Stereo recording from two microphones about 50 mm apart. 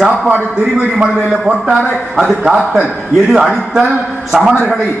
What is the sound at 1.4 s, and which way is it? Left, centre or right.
A man's voice, centre.